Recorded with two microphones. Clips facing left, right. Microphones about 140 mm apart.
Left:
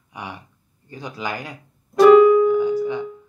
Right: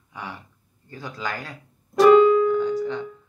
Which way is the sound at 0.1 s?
15° left (ahead or behind).